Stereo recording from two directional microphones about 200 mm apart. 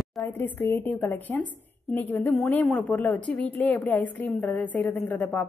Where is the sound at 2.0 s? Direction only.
10° left (ahead or behind).